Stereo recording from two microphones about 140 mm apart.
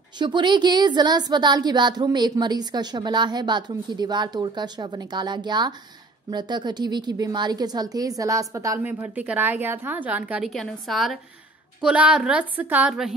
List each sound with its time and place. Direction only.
0.2 s a woman's voice: 35° right (ahead or behind); by 10.5 s 10° right (ahead or behind)
10.5 s a woman's voice: centre (ahead or behind)